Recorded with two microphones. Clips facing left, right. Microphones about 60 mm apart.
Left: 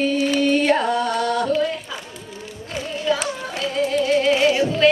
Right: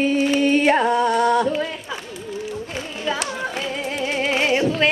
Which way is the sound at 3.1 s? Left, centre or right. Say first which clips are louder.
Left 3 dB; right.